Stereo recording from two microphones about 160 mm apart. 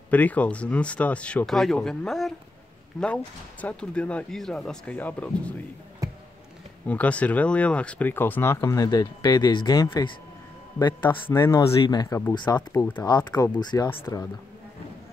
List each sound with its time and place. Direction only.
0.1 s speech: 10° left (ahead or behind)
3.6 s speech: 10° left (ahead or behind)
6.0 s a sound: 20° right (ahead or behind)
6.9 s speech: 10° left (ahead or behind); by 11.1 s 30° left (ahead or behind)
11.2 s speech: 15° left (ahead or behind)
13.2 s speech: 10° left (ahead or behind)
13.6 s speech: 25° left (ahead or behind)
13.8 s speech: 15° left (ahead or behind)